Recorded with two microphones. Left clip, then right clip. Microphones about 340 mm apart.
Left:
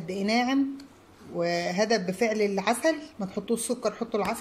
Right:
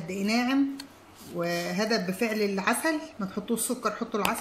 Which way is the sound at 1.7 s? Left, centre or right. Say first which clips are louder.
Left 3 dB; left.